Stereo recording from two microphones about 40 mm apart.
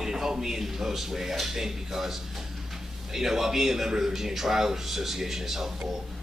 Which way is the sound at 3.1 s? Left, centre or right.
Centre.